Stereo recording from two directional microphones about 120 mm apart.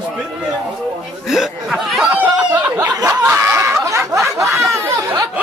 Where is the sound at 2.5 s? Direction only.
35° right (ahead or behind).